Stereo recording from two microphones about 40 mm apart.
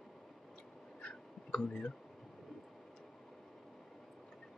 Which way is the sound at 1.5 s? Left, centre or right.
Left.